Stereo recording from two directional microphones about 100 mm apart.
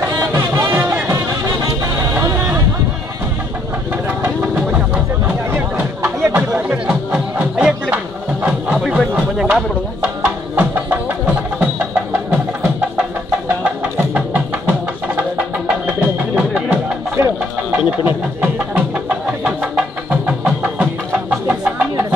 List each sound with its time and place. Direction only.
0.2 s music: 30° right (ahead or behind)
4.2 s music: 15° right (ahead or behind)
8.7 s a sound: centre (ahead or behind)
10.0 s music: 15° right (ahead or behind)
13.7 s music: 15° right (ahead or behind)
15.9 s music: 10° right (ahead or behind)
17.2 s a sound: 30° right (ahead or behind)
17.6 s a sound: 15° right (ahead or behind)
21.5 s music: 15° right (ahead or behind)